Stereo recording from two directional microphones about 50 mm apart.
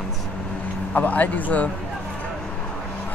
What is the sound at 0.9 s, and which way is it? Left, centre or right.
Speech, left.